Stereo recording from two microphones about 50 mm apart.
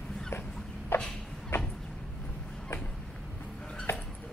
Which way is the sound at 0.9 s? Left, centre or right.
Left.